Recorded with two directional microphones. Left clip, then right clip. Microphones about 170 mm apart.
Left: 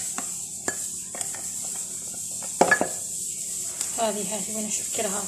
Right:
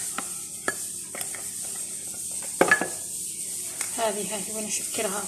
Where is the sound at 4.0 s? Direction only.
10° right (ahead or behind).